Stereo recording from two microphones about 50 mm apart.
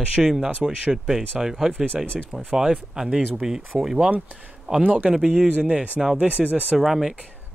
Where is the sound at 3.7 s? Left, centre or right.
Centre.